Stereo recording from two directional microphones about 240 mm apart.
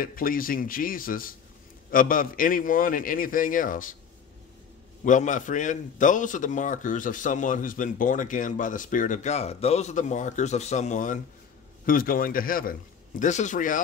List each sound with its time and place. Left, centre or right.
0.0 s a man's voice: left
5.0 s a man's voice: left